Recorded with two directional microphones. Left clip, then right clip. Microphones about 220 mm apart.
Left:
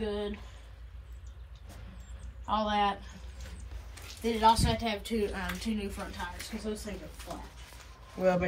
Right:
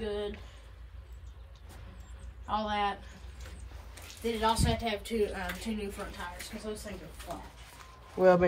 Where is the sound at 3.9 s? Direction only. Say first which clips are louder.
Left 1 dB; 15° left (ahead or behind).